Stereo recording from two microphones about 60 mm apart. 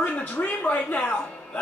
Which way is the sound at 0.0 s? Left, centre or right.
Left.